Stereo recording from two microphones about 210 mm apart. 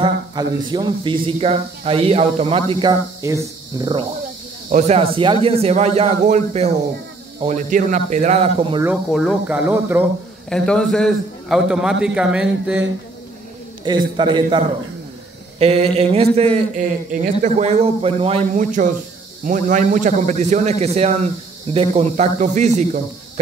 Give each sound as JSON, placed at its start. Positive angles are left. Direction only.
{"t": 0.0, "sound": "speech", "side_deg": -20}
{"t": 4.6, "sound": "a man's voice", "side_deg": -35}
{"t": 8.8, "sound": "speech", "side_deg": -5}
{"t": 10.5, "sound": "a man's voice", "side_deg": 5}
{"t": 14.1, "sound": "speech", "side_deg": -20}
{"t": 15.6, "sound": "a man's voice", "side_deg": -30}